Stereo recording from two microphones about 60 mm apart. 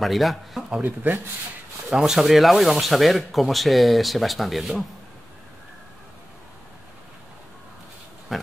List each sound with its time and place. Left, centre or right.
0.0 s speech: centre
0.8 s speech: right
2.0 s speech: centre
8.3 s pig: centre